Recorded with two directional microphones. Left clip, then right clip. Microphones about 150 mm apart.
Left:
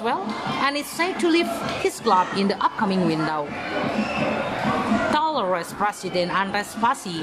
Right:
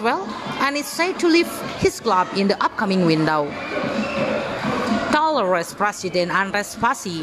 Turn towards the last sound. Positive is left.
turn(degrees=-35)  # may be behind; listen again after turning